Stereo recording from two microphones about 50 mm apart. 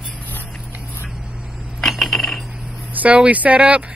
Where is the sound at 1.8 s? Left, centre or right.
Centre.